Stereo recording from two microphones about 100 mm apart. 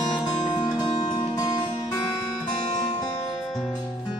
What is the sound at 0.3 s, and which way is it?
Music, 45° left (ahead or behind).